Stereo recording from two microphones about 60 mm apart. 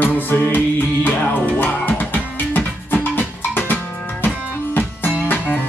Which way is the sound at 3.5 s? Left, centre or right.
Left.